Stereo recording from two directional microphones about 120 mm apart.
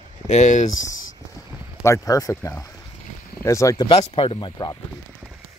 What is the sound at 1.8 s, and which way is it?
Speech, 30° left (ahead or behind).